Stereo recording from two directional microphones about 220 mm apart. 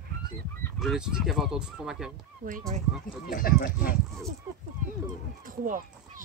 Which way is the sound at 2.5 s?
35° right (ahead or behind).